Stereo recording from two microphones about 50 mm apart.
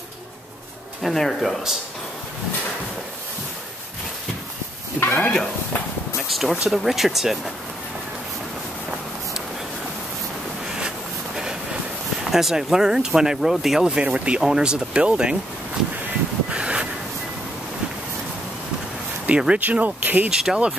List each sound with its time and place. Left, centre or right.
1.0 s speech: centre
5.2 s speech: centre
6.2 s a sound: centre
6.7 s speech: centre
12.3 s speech: centre
13.8 s speech: right
16.4 s a sound: right
19.2 s speech: right
19.6 s speech: right
20.2 s speech: centre